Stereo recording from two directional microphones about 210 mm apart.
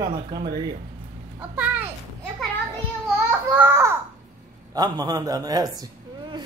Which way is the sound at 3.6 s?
10° right (ahead or behind).